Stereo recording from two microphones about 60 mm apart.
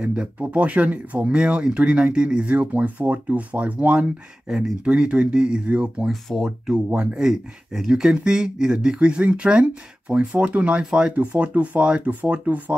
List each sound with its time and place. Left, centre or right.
0.0 s speech: centre
4.5 s speech: centre
6.0 s speech: centre
6.7 s speech: centre